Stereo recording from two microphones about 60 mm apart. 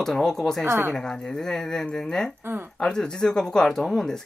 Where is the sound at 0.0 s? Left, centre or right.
Centre.